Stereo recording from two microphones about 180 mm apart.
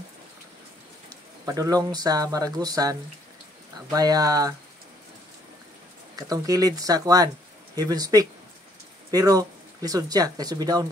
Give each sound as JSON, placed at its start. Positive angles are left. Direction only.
{"t": 1.4, "sound": "speech", "side_deg": -20}
{"t": 6.1, "sound": "speech", "side_deg": -20}